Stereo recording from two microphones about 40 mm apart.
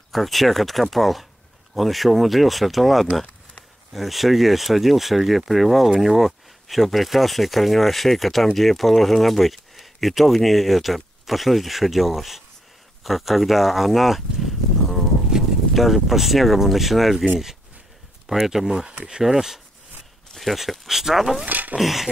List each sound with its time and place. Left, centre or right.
0.1 s speech: centre
15.3 s a sound: centre
15.7 s speech: centre
18.3 s speech: centre
21.5 s speech: right
21.7 s speech: centre